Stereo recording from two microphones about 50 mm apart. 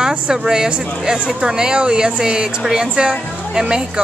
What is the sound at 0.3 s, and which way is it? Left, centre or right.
Speech, centre.